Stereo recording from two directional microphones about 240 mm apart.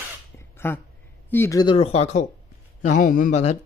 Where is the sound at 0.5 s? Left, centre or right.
Centre.